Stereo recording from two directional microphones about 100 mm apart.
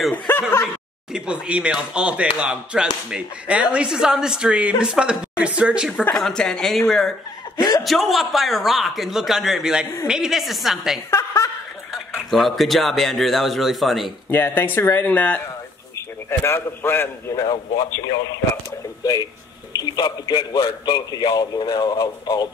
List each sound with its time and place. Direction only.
0.1 s a sound: 20° left (ahead or behind)
1.1 s speech: 10° right (ahead or behind)
6.0 s speech: 5° left (ahead or behind)
7.8 s speech: centre (ahead or behind)
11.1 s snicker: 30° left (ahead or behind)
11.9 s speech: centre (ahead or behind)
14.3 s speech: 20° left (ahead or behind)
17.4 s a man's voice: 35° left (ahead or behind)
19.7 s a man's voice: 40° left (ahead or behind)